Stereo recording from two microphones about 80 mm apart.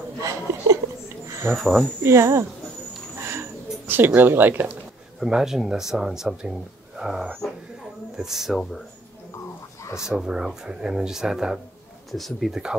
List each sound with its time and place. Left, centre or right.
0.2 s a sound: right
1.6 s speech: centre
2.0 s speech: right
3.2 s a sound: right
5.2 s speech: centre
9.9 s speech: centre